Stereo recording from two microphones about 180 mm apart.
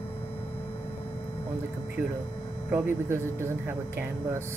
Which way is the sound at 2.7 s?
15° right (ahead or behind).